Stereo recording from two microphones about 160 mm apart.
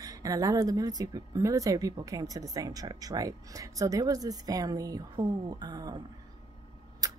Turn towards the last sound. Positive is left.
turn(degrees=-25)  # may be behind; listen again after turning